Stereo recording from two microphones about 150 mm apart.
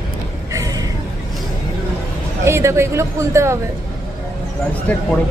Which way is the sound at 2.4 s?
15° right (ahead or behind).